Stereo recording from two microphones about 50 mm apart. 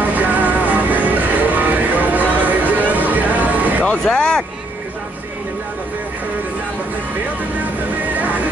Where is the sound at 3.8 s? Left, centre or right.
Left.